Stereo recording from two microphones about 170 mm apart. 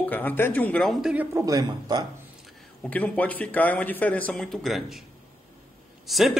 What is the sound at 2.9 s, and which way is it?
A man's voice, 10° left (ahead or behind).